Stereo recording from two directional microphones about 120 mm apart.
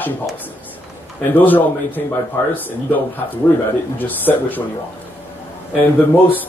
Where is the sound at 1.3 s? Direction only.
15° left (ahead or behind).